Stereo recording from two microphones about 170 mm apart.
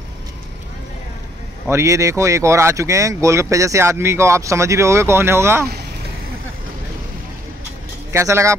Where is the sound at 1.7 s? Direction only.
15° right (ahead or behind).